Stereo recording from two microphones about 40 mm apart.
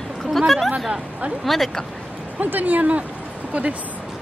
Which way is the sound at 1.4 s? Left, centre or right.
Centre.